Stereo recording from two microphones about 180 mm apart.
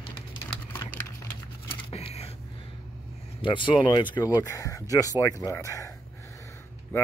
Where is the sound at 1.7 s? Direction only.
30° left (ahead or behind).